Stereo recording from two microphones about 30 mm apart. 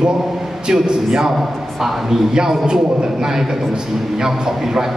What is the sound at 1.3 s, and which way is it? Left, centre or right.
Speech, centre.